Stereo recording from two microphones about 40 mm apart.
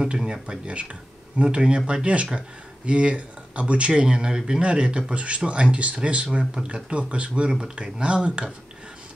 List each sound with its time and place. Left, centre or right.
0.1 s speech: right